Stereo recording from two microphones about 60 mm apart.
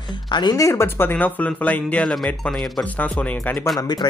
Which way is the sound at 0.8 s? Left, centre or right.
Left.